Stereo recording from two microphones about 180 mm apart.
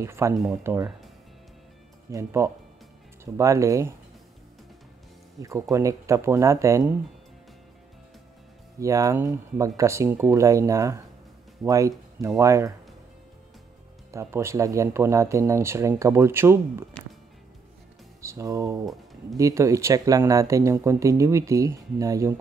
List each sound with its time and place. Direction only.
0.0 s speech: 15° right (ahead or behind)
2.0 s speech: 15° right (ahead or behind)
5.4 s speech: 20° right (ahead or behind)
8.7 s speech: 20° right (ahead or behind)
14.1 s speech: 15° right (ahead or behind)
18.2 s speech: 15° right (ahead or behind)